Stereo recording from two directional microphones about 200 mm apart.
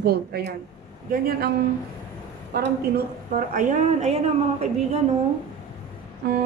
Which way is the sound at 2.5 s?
50° right (ahead or behind).